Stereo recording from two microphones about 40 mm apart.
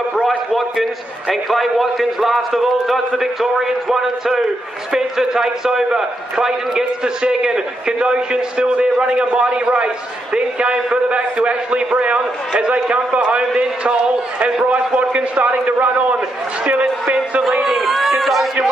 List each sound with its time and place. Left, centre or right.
1.3 s a man's voice: centre; by 17.4 s right
17.4 s a man's voice: centre